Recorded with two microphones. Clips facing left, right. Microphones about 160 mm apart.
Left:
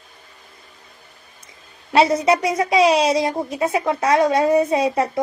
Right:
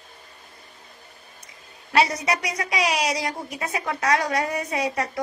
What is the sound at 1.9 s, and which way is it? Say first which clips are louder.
A child's voice: left 7 dB; 25° left (ahead or behind).